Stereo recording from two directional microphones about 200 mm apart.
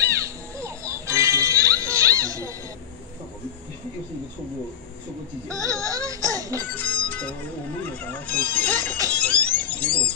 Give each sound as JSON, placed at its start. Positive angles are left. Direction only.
{"t": 0.6, "sound": "music", "side_deg": -15}
{"t": 5.5, "sound": "music", "side_deg": -15}
{"t": 6.7, "sound": "music", "side_deg": 5}
{"t": 7.8, "sound": "speech", "side_deg": 5}
{"t": 9.1, "sound": "a sound", "side_deg": 5}